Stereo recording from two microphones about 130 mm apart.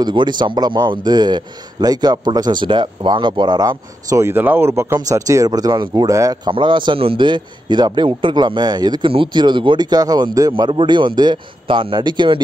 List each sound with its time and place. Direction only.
0.0 s a man's voice: 35° right (ahead or behind)
6.5 s a man's voice: 40° right (ahead or behind)
10.7 s a man's voice: 40° right (ahead or behind)